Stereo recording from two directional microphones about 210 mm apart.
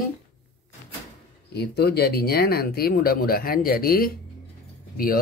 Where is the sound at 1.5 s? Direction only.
50° left (ahead or behind).